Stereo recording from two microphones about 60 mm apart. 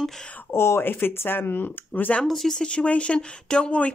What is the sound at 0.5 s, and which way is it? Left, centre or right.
Speech, left.